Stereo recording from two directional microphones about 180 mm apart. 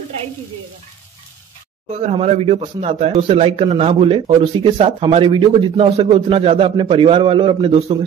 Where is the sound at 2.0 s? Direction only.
35° right (ahead or behind).